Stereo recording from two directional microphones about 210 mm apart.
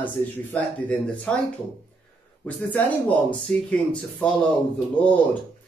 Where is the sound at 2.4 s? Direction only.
5° left (ahead or behind).